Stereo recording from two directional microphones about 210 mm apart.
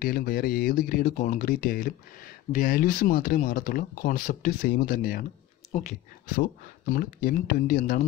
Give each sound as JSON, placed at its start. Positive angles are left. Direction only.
{"t": 0.0, "sound": "speech", "side_deg": 45}